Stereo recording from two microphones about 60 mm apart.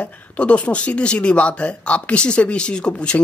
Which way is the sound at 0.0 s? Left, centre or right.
Left.